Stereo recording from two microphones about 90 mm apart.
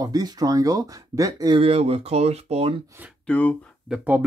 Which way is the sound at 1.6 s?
90° right.